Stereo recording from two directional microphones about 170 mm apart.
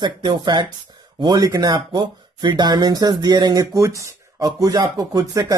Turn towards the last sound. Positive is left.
turn(degrees=-25)  # may be behind; listen again after turning